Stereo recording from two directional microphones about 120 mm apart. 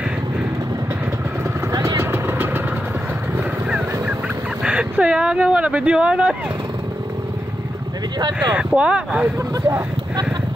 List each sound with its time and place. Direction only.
1.7 s vehicle: 30° right (ahead or behind)
3.3 s boat: 10° right (ahead or behind)
4.6 s speech: 10° right (ahead or behind)
8.4 s speech: 10° right (ahead or behind)